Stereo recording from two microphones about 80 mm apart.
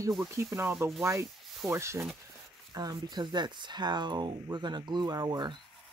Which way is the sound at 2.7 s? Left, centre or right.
Right.